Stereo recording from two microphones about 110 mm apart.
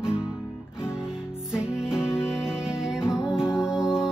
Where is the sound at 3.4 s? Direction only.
25° left (ahead or behind).